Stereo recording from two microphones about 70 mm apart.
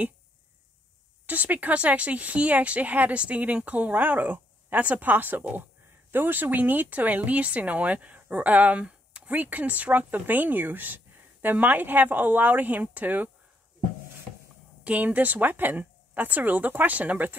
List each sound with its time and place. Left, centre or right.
1.2 s speech: right
14.8 s speech: centre